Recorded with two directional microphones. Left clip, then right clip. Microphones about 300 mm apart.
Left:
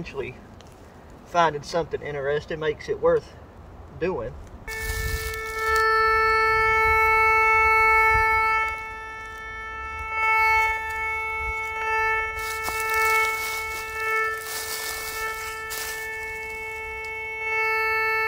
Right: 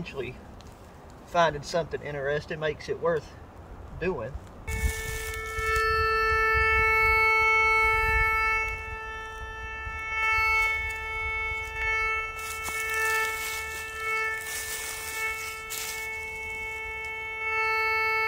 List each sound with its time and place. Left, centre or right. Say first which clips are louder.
0.0 s speech: left 3 dB; centre
4.6 s wind instrument: left 4 dB; centre
13.0 s a sound: left 6 dB; centre